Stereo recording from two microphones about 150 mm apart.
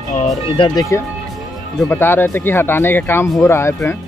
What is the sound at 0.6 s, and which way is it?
Speech, 25° left (ahead or behind).